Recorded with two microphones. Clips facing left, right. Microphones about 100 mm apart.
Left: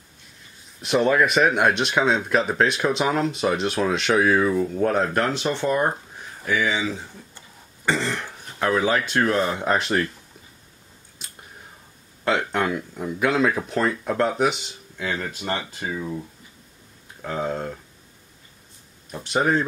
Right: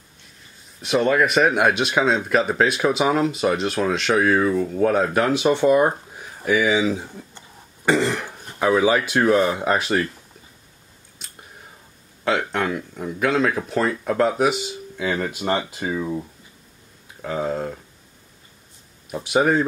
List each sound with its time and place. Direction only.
0.7 s speech: centre (ahead or behind)
11.2 s clicking: centre (ahead or behind)
12.3 s speech: centre (ahead or behind)
15.1 s speech: 15° right (ahead or behind)
17.2 s speech: centre (ahead or behind)
19.0 s speech: 10° right (ahead or behind)